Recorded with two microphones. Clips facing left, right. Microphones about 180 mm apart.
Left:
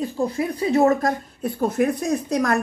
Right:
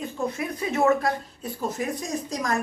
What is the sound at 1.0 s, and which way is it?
A woman's voice, 55° left (ahead or behind).